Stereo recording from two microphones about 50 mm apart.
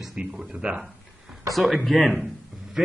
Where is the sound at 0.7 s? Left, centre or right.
Centre.